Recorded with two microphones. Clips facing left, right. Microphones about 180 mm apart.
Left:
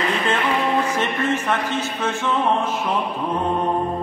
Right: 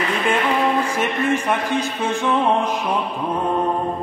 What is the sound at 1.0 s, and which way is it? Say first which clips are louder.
Music: right 2 dB; 10° right (ahead or behind).